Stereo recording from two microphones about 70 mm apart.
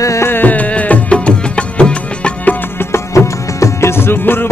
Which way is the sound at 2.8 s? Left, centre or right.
Left.